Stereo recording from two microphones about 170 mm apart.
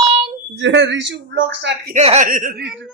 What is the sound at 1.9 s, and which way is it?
Speech, 45° right (ahead or behind).